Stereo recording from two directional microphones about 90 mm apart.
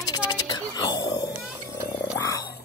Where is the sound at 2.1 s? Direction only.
40° left (ahead or behind).